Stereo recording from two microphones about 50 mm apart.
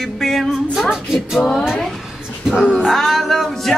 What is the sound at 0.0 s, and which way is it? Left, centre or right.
Music, centre.